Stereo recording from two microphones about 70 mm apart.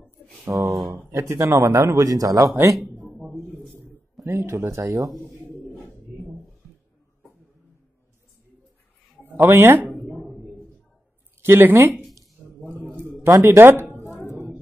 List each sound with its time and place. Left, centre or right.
0.5 s a man's voice: right
3.1 s a sound: centre
4.2 s a man's voice: right
9.4 s speech: right
11.4 s speech: right
13.2 s speech: right
13.6 s speech: right
14.1 s a sound: left